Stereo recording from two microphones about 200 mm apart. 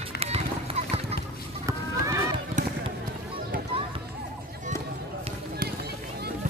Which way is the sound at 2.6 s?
40° right (ahead or behind).